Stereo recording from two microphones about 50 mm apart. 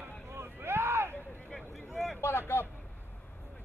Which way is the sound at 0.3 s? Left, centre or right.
Right.